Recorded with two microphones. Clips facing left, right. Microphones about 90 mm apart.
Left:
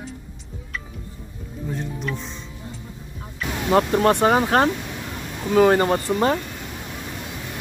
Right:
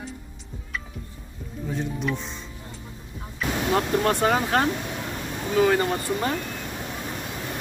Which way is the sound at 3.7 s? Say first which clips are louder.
Left 6 dB; 30° left (ahead or behind).